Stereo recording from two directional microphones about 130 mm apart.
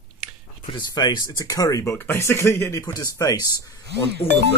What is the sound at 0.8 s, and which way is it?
Speech, 30° left (ahead or behind).